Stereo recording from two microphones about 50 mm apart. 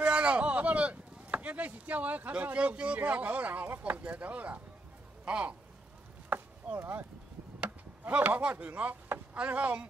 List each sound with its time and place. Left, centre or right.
0.0 s a sound: right
3.0 s speech: right
6.3 s chop: right
8.1 s speech: right